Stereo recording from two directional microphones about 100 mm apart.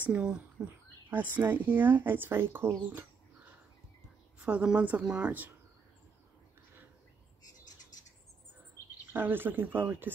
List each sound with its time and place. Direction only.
0.0 s speech: 10° right (ahead or behind)
4.4 s speech: 10° right (ahead or behind)
9.1 s speech: 20° right (ahead or behind)